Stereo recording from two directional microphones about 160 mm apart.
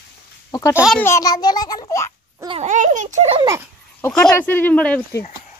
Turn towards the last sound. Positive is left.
turn(degrees=10)  # may be behind; listen again after turning